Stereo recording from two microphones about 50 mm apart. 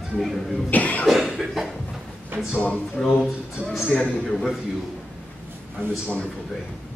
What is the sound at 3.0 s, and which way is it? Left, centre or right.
Speech, centre.